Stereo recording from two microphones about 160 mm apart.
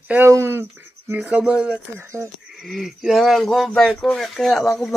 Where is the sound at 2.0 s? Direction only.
15° right (ahead or behind).